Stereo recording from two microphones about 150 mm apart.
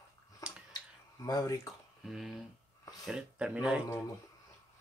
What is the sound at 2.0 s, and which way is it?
Speech, centre (ahead or behind).